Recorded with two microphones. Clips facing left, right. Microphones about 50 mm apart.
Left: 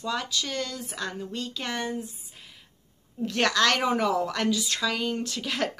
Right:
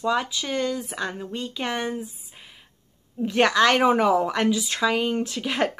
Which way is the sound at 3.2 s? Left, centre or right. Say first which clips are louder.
Right 5 dB; centre.